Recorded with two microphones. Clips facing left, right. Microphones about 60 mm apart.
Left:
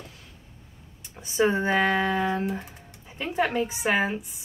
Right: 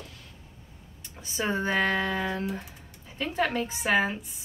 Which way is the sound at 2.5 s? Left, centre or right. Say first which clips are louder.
Left 3 dB; centre.